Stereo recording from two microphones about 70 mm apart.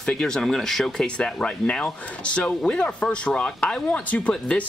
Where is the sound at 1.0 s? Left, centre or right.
Centre.